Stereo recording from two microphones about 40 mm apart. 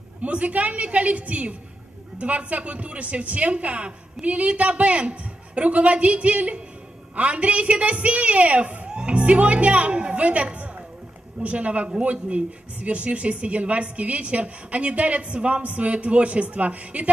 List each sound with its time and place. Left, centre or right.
0.2 s speech: right
8.8 s music: right
9.1 s speech: right